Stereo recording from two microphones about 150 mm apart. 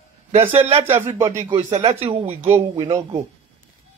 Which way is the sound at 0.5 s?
45° right (ahead or behind).